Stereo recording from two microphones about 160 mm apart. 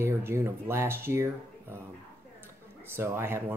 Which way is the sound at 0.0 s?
15° right (ahead or behind).